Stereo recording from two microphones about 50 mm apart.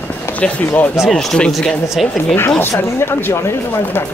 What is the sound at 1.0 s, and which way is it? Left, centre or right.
Speech, centre.